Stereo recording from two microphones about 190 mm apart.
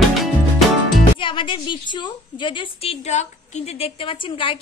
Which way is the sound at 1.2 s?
25° left (ahead or behind).